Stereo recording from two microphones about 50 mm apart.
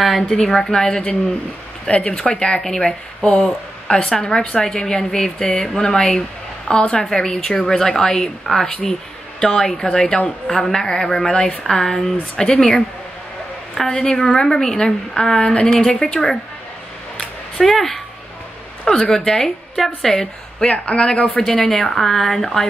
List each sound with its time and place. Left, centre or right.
0.3 s a woman's voice: centre
9.4 s a woman's voice: centre
17.2 s a sound: centre
18.9 s a woman's voice: centre
20.6 s a woman's voice: left